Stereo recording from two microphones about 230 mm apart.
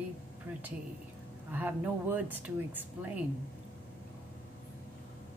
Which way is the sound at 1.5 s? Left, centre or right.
Centre.